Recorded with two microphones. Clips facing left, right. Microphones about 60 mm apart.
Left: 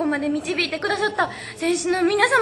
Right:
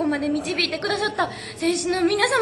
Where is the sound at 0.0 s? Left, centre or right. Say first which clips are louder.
Even; centre.